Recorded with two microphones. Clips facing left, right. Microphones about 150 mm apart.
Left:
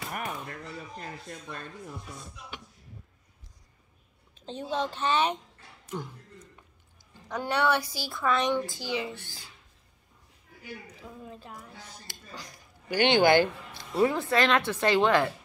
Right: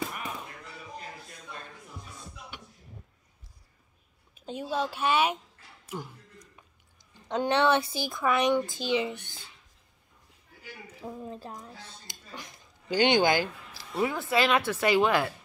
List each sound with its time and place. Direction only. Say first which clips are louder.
0.1 s chop: left 3 dB; 50° left (ahead or behind)
4.4 s speech: even; 10° right (ahead or behind)
5.9 s a sound: left 2 dB; 10° right (ahead or behind)
7.2 s a woman's voice: right 3 dB; 20° right (ahead or behind)
11.2 s a woman's voice: right 5 dB; 35° right (ahead or behind)
11.5 s speech: right 1 dB; 20° right (ahead or behind)
13.7 s speech: left 4 dB; 5° right (ahead or behind)